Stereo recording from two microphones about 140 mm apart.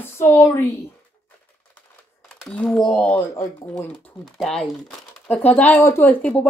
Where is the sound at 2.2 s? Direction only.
5° left (ahead or behind).